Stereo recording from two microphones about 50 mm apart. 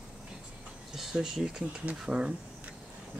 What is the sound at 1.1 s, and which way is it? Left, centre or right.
Speech, centre.